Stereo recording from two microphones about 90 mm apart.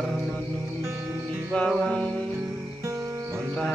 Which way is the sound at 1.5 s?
5° left (ahead or behind).